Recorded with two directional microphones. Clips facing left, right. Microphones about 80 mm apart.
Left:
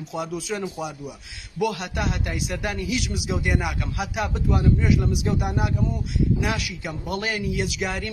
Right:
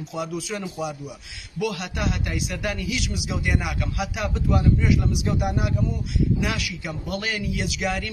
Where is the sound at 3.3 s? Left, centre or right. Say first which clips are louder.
Left 2 dB; centre.